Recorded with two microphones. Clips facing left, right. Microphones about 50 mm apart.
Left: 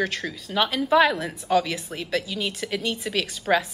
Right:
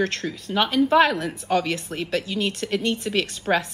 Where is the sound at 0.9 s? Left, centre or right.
Centre.